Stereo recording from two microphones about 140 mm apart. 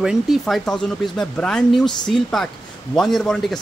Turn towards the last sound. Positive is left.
turn(degrees=5)  # may be behind; listen again after turning